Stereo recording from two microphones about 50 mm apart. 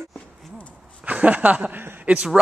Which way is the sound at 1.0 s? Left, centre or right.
Right.